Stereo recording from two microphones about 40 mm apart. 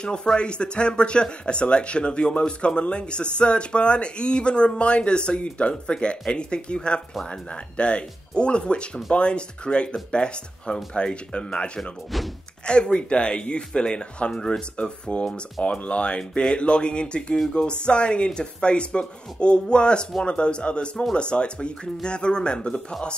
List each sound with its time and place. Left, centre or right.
0.0 s speech: left